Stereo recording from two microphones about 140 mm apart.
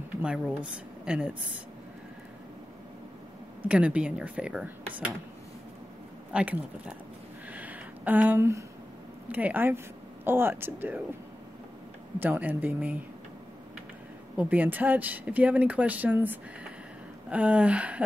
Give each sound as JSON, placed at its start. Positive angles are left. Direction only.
{"t": 0.2, "sound": "speech", "side_deg": -10}
{"t": 3.6, "sound": "speech", "side_deg": -10}
{"t": 6.3, "sound": "speech", "side_deg": -10}
{"t": 7.5, "sound": "a sound", "side_deg": -10}
{"t": 9.3, "sound": "speech", "side_deg": -10}
{"t": 12.2, "sound": "speech", "side_deg": -10}
{"t": 14.3, "sound": "speech", "side_deg": -10}